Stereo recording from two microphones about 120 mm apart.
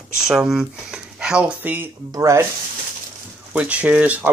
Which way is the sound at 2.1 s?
25° right (ahead or behind).